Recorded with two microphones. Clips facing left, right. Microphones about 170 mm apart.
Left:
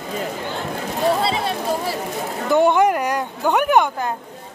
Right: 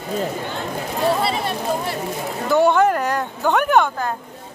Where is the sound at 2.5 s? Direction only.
15° left (ahead or behind).